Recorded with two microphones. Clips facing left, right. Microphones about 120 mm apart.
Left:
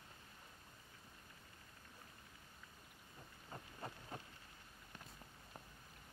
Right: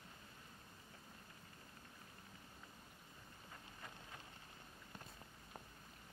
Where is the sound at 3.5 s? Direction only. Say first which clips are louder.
Left 7 dB; 35° left (ahead or behind).